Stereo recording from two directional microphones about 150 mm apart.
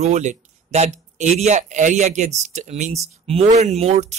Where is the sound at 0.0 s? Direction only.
55° right (ahead or behind).